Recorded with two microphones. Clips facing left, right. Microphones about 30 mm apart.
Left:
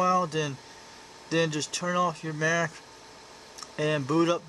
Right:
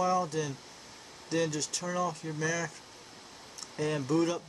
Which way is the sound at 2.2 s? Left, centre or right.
Left.